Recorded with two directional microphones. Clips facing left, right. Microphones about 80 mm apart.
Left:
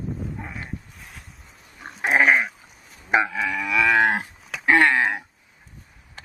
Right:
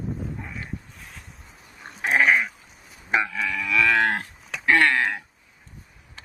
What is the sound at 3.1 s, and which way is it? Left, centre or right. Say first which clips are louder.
Livestock: left 3 dB; centre.